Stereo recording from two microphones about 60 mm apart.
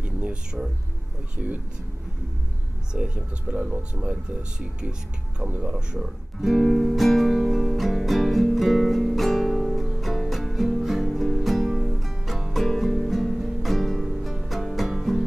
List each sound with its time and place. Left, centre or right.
0.0 s music: centre
2.9 s speech: centre
6.4 s music: centre